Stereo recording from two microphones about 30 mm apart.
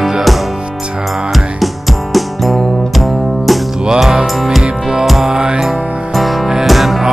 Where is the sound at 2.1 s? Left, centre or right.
Centre.